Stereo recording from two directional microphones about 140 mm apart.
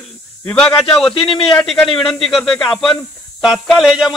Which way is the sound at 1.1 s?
40° left (ahead or behind).